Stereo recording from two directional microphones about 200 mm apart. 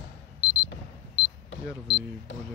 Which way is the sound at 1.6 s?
5° right (ahead or behind).